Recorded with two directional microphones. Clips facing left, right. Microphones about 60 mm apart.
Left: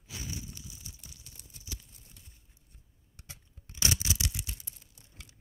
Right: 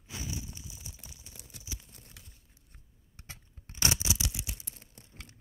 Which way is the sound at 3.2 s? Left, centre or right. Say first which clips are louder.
Right 3 dB; right.